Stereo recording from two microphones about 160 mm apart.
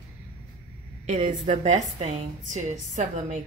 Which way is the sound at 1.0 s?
45° right (ahead or behind).